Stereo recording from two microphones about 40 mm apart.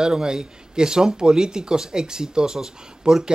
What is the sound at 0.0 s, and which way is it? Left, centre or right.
Speech, centre.